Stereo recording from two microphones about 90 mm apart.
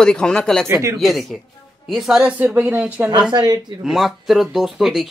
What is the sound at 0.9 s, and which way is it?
Speech, centre (ahead or behind).